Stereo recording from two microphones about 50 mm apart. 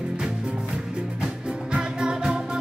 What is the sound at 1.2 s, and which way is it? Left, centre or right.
Music, centre.